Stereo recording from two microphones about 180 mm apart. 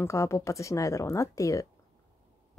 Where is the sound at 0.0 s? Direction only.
15° left (ahead or behind).